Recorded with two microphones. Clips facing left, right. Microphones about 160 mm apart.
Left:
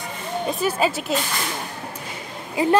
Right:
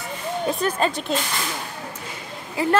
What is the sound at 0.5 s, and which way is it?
Speech, 5° left (ahead or behind).